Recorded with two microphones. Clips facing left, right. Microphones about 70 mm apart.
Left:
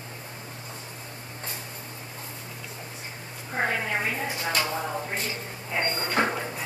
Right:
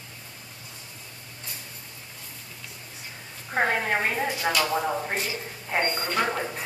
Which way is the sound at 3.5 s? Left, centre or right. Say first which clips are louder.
Right 3 dB; right.